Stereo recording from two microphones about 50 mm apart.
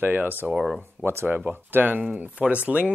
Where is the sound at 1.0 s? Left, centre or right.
Right.